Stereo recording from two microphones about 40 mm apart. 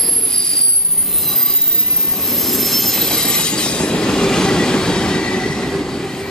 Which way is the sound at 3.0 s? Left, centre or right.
Centre.